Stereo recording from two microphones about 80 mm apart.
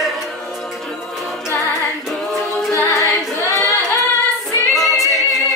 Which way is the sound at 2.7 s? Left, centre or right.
Left.